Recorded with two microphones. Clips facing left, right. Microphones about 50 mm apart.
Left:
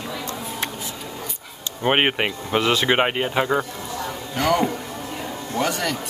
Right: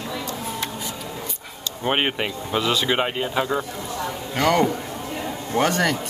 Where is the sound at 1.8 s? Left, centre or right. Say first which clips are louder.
Left 3 dB; left.